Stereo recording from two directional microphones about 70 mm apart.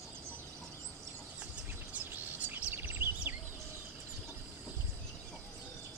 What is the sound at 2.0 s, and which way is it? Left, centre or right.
Chirp, right.